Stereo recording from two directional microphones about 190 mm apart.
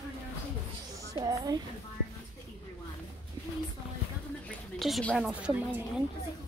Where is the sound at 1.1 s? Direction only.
20° right (ahead or behind).